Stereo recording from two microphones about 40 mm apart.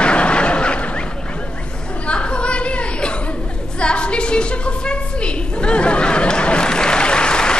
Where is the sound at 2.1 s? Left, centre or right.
Left.